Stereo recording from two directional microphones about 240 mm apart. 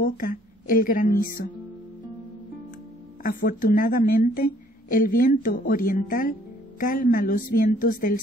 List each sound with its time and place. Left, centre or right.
0.0 s a woman's voice: left
3.2 s a woman's voice: left